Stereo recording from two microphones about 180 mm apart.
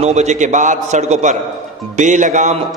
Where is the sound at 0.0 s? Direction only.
40° right (ahead or behind).